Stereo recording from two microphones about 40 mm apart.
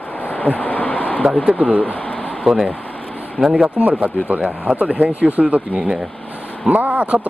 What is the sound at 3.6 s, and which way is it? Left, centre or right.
Speech, right.